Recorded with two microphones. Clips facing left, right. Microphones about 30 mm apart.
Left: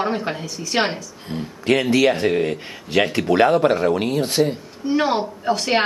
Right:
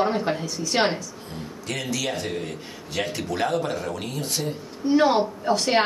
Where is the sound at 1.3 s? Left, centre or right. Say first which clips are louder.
Left 13 dB; left.